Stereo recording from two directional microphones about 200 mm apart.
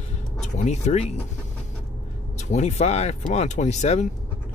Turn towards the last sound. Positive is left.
turn(degrees=35)  # may be behind; listen again after turning